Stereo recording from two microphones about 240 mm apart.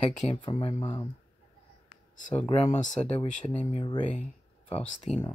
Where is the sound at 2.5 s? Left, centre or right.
Left.